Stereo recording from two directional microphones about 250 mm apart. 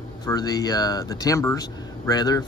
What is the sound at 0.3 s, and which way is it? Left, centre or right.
Speech, centre.